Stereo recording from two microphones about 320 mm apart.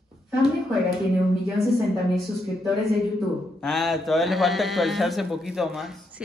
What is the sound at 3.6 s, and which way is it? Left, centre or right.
A man's voice, centre.